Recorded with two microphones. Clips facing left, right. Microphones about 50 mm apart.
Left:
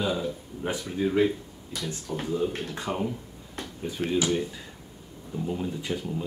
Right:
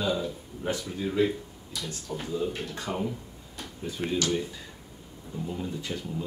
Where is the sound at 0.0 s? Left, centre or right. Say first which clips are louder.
Left 1 dB; centre.